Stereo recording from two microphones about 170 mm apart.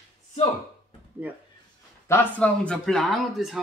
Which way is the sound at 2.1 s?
10° left (ahead or behind).